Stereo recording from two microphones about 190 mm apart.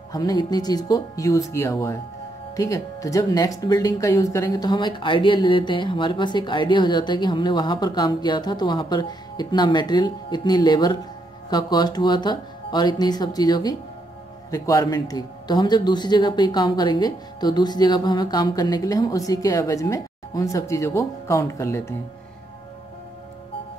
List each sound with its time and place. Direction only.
0.1 s speech: 20° left (ahead or behind)